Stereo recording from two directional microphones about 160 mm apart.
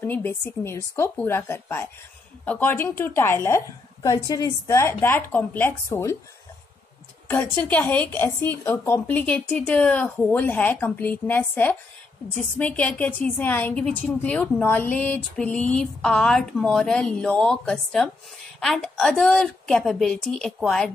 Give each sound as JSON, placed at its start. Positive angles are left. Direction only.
{"t": 0.0, "sound": "a woman's voice", "side_deg": 10}
{"t": 7.2, "sound": "a woman's voice", "side_deg": 10}